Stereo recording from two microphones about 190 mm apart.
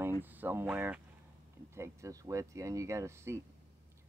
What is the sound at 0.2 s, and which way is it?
Speech, 10° right (ahead or behind).